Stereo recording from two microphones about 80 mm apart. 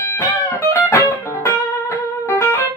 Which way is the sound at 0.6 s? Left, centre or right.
Left.